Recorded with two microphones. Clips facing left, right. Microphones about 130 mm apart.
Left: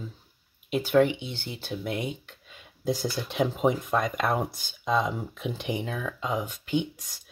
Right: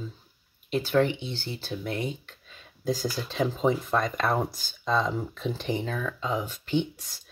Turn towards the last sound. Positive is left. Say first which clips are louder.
# right 1 dB
turn(degrees=10)  # may be behind; listen again after turning